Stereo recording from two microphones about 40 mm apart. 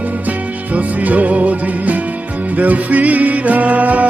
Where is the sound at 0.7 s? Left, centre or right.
Right.